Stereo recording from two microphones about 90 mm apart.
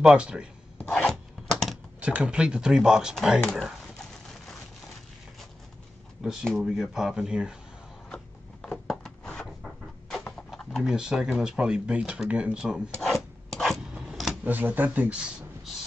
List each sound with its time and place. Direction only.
0.0 s speech: 10° right (ahead or behind)
0.8 s filing: 5° left (ahead or behind)
1.5 s typing: centre (ahead or behind)
2.0 s speech: 15° right (ahead or behind)
3.4 s a sound: 5° left (ahead or behind)
6.2 s speech: 5° right (ahead or behind)
8.6 s a sound: 5° left (ahead or behind)
10.8 s speech: 5° right (ahead or behind)
13.0 s filing: 5° left (ahead or behind)
13.9 s a sound: 5° right (ahead or behind)
14.4 s speech: 20° right (ahead or behind)